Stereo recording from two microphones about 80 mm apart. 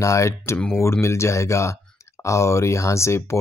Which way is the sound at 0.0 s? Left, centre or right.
Left.